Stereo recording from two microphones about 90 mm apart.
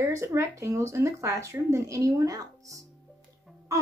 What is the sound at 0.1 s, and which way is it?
A woman's voice, 35° right (ahead or behind).